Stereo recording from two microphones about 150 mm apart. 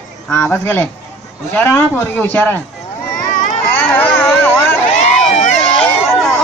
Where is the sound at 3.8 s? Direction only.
15° left (ahead or behind).